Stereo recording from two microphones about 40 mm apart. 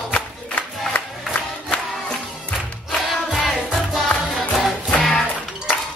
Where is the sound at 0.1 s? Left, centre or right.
Left.